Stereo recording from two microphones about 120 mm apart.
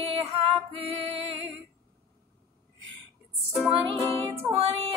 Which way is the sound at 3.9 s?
55° right (ahead or behind).